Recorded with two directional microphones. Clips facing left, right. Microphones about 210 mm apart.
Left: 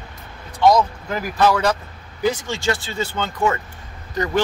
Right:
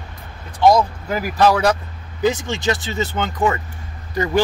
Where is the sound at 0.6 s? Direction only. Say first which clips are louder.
Right 1 dB; 10° right (ahead or behind).